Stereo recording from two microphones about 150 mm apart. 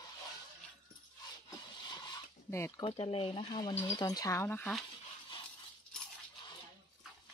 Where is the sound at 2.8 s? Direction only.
35° left (ahead or behind); by 4.7 s 15° left (ahead or behind).